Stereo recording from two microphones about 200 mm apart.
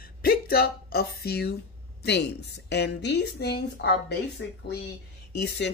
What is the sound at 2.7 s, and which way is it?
Speech, 60° left (ahead or behind).